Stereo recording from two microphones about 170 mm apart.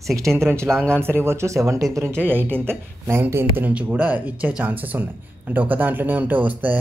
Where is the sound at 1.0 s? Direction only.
15° right (ahead or behind).